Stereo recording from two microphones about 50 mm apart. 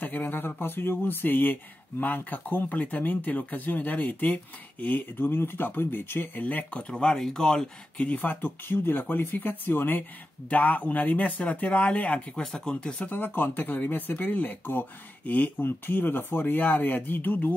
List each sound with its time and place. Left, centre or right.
0.0 s speech: left
6.4 s speech: left
7.2 s speech: centre
8.0 s speech: left
10.5 s speech: left
13.0 s speech: left